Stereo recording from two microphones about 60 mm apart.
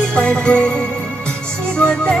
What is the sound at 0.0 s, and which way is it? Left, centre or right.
Music, centre.